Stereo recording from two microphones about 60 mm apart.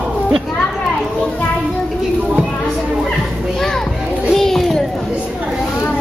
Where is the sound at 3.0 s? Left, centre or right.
Centre.